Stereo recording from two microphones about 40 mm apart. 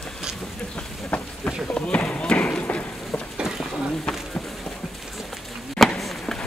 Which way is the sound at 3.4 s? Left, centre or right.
Centre.